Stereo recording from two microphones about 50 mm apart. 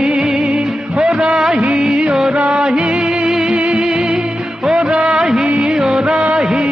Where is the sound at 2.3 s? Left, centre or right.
Centre.